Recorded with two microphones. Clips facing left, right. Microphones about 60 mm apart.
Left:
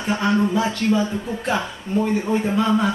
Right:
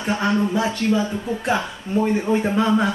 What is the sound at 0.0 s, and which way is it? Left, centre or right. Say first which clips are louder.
Speech: even; centre.